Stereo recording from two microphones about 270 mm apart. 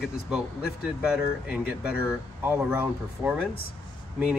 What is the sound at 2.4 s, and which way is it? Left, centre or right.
Speech, centre.